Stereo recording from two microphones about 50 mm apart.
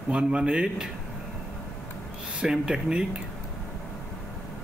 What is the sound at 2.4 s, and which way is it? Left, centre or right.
Speech, centre.